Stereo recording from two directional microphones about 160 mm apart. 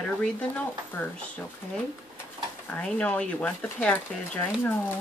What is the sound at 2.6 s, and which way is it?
Speech, 10° left (ahead or behind).